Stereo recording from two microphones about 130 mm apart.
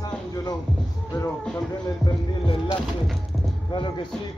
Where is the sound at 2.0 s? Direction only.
40° left (ahead or behind).